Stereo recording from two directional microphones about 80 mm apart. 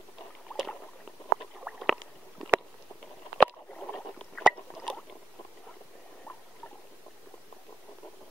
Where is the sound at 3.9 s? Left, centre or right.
Centre.